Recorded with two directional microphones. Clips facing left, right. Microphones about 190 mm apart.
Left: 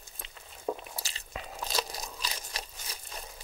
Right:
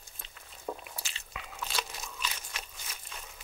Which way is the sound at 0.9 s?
40° left (ahead or behind).